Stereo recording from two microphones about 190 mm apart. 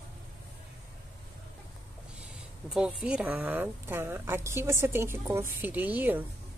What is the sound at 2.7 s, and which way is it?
A woman's voice, 5° right (ahead or behind).